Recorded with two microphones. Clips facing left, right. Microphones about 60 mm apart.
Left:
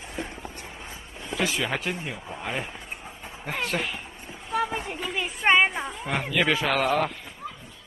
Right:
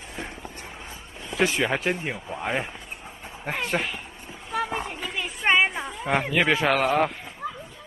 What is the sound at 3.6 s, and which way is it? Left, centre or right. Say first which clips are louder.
Speech: right 1 dB; centre.